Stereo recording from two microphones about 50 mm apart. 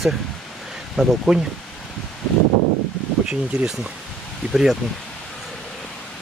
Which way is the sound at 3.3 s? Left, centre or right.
Centre.